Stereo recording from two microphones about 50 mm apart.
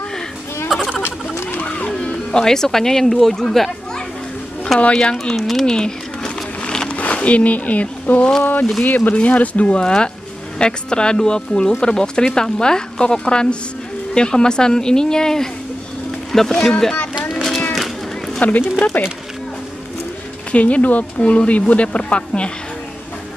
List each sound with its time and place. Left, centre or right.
1.0 s a sound: left
1.6 s music: left
2.0 s speech: centre
4.7 s speech: left
5.3 s speech: centre
5.7 s a sound: centre
6.9 s speech: left
17.3 s a sound: centre
18.4 s speech: left
20.5 s speech: left